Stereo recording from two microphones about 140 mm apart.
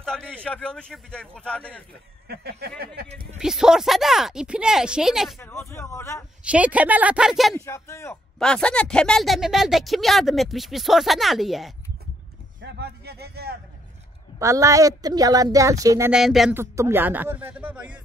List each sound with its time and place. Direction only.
0.0 s a man's voice: 5° left (ahead or behind)
3.3 s speech: 5° right (ahead or behind)
5.4 s a man's voice: 20° left (ahead or behind)
6.5 s speech: 10° right (ahead or behind)
7.5 s speech: 20° left (ahead or behind)
8.4 s speech: 5° left (ahead or behind)
14.4 s a woman's voice: 20° right (ahead or behind)
16.1 s speech: centre (ahead or behind)
16.5 s speech: 15° right (ahead or behind)